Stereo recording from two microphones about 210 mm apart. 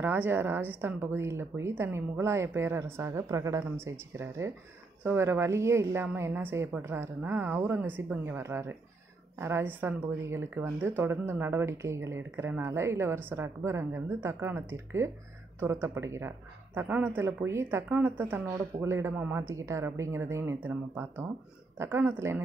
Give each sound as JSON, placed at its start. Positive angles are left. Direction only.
{"t": 0.0, "sound": "speech", "side_deg": -10}